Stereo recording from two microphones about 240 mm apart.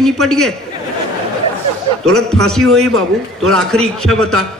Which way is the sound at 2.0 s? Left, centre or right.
Right.